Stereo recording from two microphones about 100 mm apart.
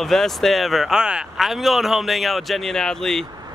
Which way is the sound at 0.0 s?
Centre (ahead or behind).